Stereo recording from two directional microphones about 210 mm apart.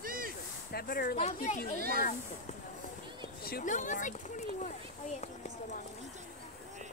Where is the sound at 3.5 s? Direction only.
40° left (ahead or behind).